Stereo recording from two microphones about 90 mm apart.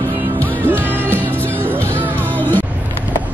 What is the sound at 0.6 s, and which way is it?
Music, 20° right (ahead or behind).